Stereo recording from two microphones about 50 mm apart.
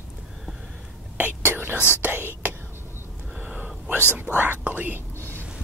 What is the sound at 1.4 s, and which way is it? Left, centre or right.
Whispering, right.